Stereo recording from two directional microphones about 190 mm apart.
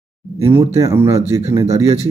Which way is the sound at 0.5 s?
15° right (ahead or behind).